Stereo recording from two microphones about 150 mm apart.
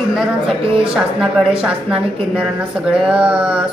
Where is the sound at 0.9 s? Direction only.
5° right (ahead or behind).